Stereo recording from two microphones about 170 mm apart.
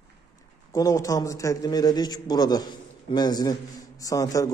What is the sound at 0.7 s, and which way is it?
A man's voice, 20° left (ahead or behind).